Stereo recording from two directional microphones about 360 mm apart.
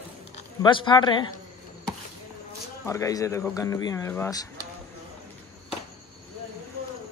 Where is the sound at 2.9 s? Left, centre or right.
Centre.